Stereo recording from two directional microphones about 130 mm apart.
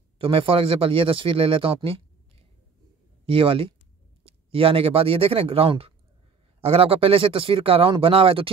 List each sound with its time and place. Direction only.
0.2 s speech: 45° right (ahead or behind)
3.3 s speech: 45° right (ahead or behind)